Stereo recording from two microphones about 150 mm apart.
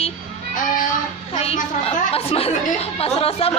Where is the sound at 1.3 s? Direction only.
45° left (ahead or behind).